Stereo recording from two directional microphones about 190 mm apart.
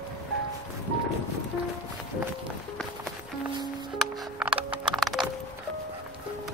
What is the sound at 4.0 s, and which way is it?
Music, 5° right (ahead or behind).